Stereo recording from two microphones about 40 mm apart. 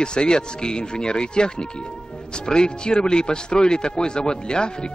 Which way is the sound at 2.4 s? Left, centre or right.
Left.